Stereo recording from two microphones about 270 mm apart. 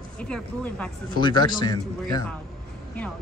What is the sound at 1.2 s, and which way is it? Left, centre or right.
Speech, centre.